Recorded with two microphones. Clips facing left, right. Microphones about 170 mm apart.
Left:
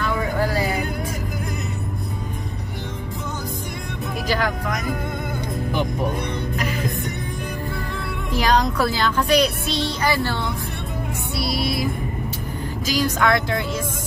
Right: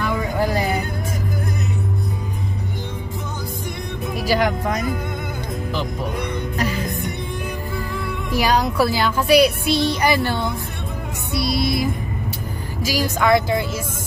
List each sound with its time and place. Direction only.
4.3 s music: 20° right (ahead or behind)
8.3 s a woman's voice: 10° right (ahead or behind)
11.4 s music: 20° right (ahead or behind)
12.8 s speech: 5° right (ahead or behind)